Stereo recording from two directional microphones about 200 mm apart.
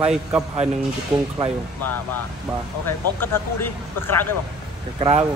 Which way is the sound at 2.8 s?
10° left (ahead or behind).